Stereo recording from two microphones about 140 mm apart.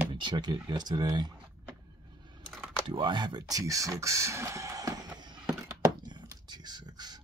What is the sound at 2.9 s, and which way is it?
Speech, 35° right (ahead or behind).